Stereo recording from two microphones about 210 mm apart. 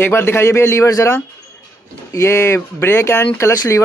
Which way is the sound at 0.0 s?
10° left (ahead or behind).